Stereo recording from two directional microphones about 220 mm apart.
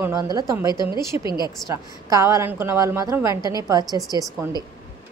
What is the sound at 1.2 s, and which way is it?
Speech, 20° left (ahead or behind).